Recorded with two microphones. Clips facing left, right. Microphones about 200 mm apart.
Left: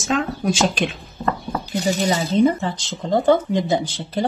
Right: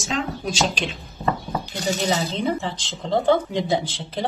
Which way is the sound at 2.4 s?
45° left (ahead or behind).